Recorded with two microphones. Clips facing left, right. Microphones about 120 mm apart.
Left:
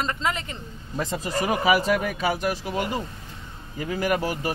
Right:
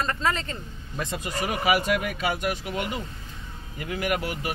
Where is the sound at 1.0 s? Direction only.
35° left (ahead or behind).